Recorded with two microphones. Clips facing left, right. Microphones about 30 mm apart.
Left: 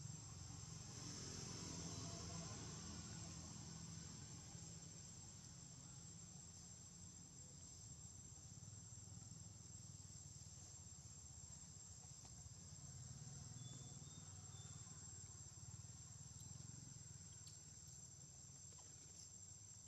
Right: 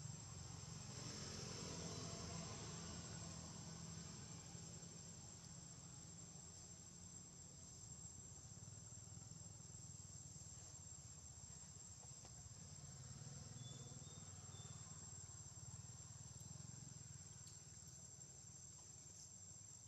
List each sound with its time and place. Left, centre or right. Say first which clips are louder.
0.0 s vehicle: right 1 dB; centre
13.2 s a sound: right 2 dB; centre
13.8 s cricket: right 1 dB; centre